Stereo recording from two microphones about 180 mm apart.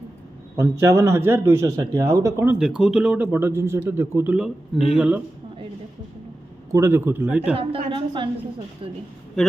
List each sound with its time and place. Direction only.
0.6 s a man's voice: 15° right (ahead or behind)
6.7 s speech: 15° right (ahead or behind)
7.5 s a woman's voice: 30° right (ahead or behind)